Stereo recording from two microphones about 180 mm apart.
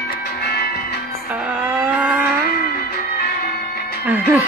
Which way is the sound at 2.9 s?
60° left (ahead or behind).